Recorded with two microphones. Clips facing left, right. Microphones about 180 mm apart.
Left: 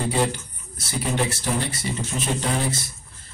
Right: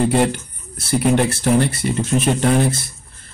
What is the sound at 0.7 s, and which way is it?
Speech, 60° right (ahead or behind).